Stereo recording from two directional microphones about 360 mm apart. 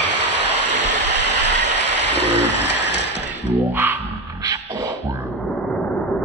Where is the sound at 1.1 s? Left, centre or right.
Left.